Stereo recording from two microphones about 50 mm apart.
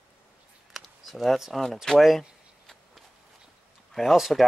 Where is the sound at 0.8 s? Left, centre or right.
Centre.